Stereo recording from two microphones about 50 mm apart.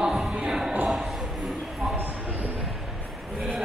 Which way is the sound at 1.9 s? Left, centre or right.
Right.